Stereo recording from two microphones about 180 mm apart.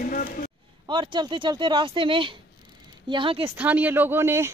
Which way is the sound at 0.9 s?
25° right (ahead or behind).